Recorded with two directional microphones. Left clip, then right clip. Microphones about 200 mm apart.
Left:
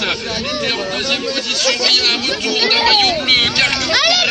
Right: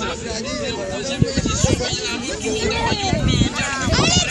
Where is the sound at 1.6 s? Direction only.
20° left (ahead or behind).